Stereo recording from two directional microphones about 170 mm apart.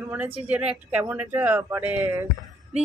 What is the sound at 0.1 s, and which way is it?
Speech, 10° right (ahead or behind).